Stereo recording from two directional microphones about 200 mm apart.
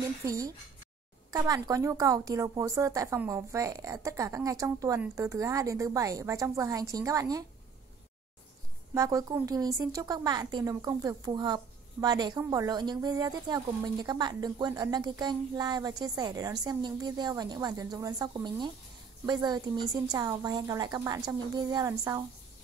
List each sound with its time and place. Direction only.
0.2 s a woman's voice: 15° right (ahead or behind)
8.9 s a woman's voice: 15° right (ahead or behind)